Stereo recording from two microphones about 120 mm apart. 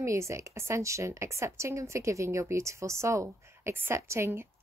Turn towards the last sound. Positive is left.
turn(degrees=-20)  # may be behind; listen again after turning